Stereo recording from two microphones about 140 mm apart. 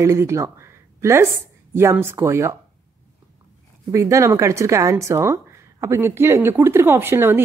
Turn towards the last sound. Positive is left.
turn(degrees=-15)  # may be behind; listen again after turning